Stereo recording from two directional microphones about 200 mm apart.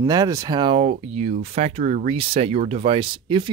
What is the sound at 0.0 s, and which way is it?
Speech, 20° right (ahead or behind).